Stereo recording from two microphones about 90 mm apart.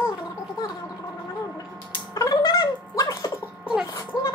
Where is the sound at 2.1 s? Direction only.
45° left (ahead or behind).